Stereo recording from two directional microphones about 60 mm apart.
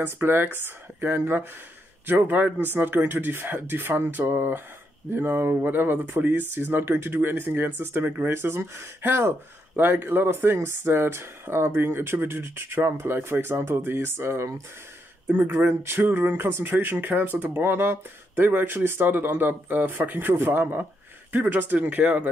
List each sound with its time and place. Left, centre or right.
0.0 s speech: right
15.6 s speech: right